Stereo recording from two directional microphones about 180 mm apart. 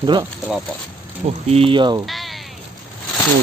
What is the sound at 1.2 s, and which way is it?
Speech, 35° right (ahead or behind).